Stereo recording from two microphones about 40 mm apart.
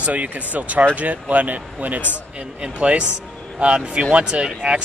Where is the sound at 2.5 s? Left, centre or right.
Right.